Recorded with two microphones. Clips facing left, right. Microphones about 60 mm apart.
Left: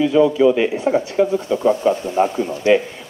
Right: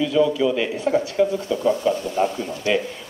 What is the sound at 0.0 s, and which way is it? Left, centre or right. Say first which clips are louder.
Speech: left 5 dB; left.